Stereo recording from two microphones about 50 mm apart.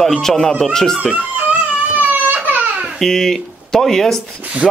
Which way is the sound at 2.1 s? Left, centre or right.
Right.